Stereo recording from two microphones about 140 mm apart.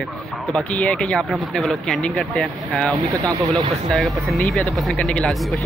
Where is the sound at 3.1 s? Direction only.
25° right (ahead or behind).